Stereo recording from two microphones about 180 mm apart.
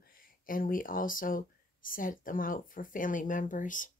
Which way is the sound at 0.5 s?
50° left (ahead or behind).